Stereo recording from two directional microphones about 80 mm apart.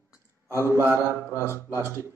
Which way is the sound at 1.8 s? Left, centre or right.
Right.